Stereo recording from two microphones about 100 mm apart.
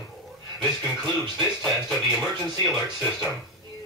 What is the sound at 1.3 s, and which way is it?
Speech, centre (ahead or behind).